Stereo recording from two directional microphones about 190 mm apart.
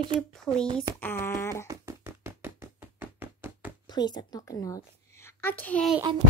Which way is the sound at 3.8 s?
20° left (ahead or behind).